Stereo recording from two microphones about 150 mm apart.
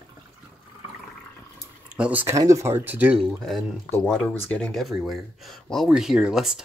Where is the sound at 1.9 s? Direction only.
10° right (ahead or behind).